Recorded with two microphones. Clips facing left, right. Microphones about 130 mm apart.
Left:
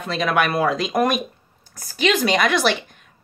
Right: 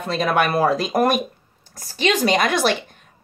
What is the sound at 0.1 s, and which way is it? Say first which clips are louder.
Speech: right 1 dB; 45° right (ahead or behind).